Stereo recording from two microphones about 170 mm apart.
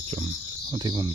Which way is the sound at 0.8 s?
25° right (ahead or behind).